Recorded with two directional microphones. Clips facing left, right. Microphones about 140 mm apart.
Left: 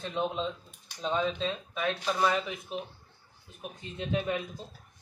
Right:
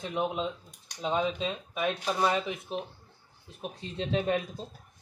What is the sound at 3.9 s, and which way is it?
Speech, 30° right (ahead or behind).